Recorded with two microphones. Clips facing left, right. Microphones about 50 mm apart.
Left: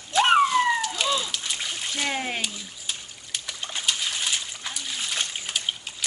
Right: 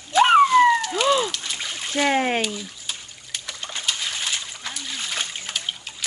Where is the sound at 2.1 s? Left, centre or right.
Right.